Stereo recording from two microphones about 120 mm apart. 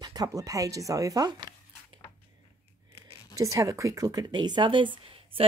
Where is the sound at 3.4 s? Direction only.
25° right (ahead or behind).